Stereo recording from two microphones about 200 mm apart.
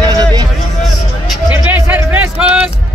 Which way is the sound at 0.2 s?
20° right (ahead or behind).